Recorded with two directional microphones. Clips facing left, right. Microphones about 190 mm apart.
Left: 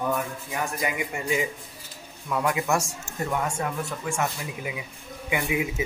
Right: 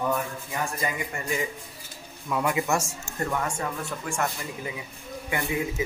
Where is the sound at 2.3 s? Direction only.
Centre (ahead or behind).